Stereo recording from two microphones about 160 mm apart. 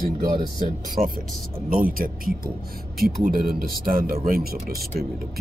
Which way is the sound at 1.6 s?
65° right (ahead or behind).